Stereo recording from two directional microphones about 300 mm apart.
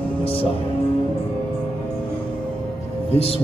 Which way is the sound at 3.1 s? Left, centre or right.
Centre.